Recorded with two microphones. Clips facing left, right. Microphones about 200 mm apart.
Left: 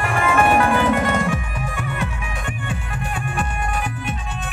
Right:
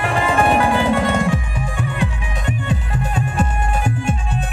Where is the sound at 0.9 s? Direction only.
30° right (ahead or behind).